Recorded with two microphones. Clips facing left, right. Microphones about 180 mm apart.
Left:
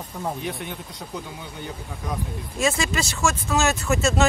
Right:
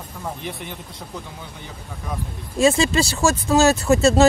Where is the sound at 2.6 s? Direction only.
30° right (ahead or behind).